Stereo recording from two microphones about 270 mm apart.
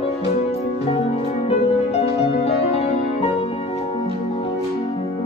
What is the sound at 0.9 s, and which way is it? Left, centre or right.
Music, left.